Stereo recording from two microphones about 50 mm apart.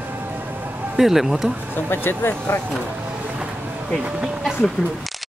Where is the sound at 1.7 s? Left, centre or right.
Left.